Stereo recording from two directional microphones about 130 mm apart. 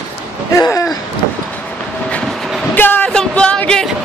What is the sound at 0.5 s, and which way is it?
Speech, 25° left (ahead or behind).